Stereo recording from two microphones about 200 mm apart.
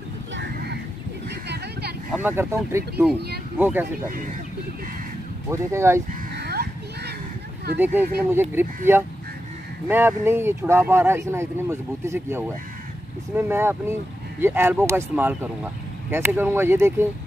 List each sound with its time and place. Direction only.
0.3 s a sound: 60° right (ahead or behind)
1.5 s vehicle: 55° right (ahead or behind)
2.2 s speech: 10° right (ahead or behind)
5.5 s speech: 15° right (ahead or behind)
6.3 s a sound: 55° right (ahead or behind)
7.8 s speech: 10° right (ahead or behind)